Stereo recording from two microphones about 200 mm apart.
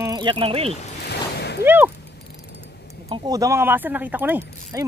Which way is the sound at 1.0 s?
55° left (ahead or behind).